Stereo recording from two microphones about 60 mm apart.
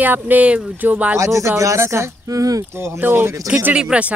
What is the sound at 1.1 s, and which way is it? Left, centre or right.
Speech, right.